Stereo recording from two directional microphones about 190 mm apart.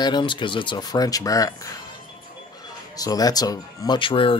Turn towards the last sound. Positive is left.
turn(degrees=25)  # may be behind; listen again after turning